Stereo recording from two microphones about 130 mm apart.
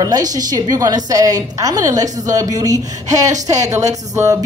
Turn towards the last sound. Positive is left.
turn(degrees=-25)  # may be behind; listen again after turning